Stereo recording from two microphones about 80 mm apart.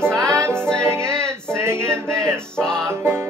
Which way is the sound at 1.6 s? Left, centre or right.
Right.